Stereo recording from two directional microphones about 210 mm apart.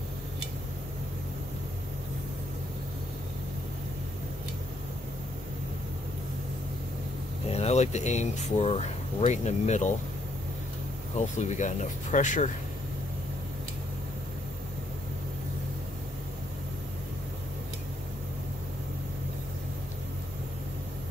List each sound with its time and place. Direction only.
7.4 s speech: 30° left (ahead or behind)
11.1 s speech: 35° left (ahead or behind)